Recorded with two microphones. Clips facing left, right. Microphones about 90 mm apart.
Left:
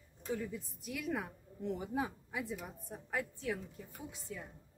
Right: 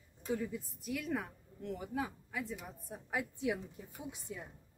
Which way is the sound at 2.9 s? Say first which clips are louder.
Right 1 dB; 10° right (ahead or behind).